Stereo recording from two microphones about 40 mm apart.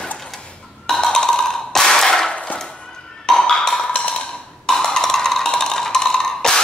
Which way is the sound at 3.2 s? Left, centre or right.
Centre.